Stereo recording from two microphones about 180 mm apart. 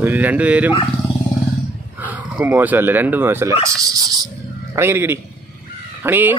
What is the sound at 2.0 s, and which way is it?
Speech, 10° right (ahead or behind).